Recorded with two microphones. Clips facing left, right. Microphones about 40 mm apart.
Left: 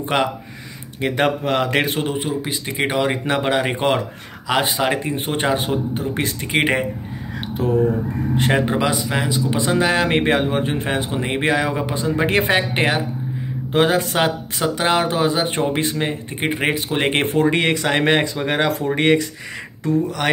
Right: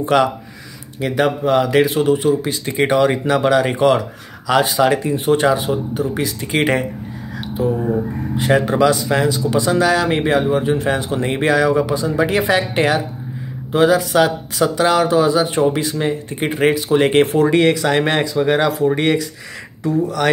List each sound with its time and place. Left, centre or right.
0.0 s speech: left
1.0 s speech: left; by 3.2 s centre
3.3 s speech: left
6.5 s speech: left
7.6 s speech: left
8.5 s speech: left
9.5 s speech: left
11.1 s speech: centre
13.7 s speech: left
16.3 s speech: centre
16.7 s speech: left
20.2 s speech: centre